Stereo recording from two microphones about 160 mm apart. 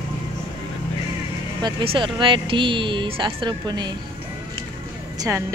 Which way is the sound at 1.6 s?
30° right (ahead or behind).